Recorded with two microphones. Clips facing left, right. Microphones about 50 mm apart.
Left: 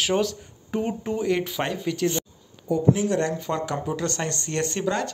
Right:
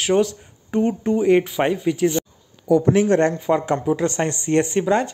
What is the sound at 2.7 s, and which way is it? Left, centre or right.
Speech, right.